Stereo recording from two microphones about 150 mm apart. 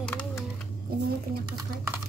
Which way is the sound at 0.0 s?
5° left (ahead or behind).